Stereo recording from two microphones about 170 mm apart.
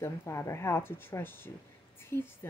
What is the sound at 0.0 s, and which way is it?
Speech, 15° left (ahead or behind).